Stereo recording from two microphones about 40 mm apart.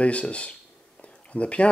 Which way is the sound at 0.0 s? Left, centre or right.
Left.